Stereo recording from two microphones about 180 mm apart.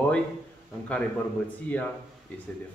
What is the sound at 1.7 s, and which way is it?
Speech, 10° left (ahead or behind).